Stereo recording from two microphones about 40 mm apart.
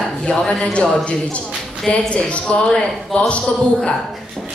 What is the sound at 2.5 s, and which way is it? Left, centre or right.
Speech, left.